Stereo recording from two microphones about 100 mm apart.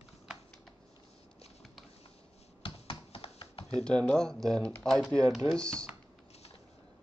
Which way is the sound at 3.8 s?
10° left (ahead or behind).